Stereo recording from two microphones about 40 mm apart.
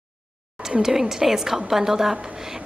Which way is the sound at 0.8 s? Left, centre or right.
Centre.